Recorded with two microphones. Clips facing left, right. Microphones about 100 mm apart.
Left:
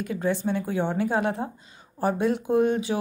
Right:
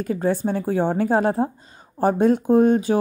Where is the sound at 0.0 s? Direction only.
40° right (ahead or behind).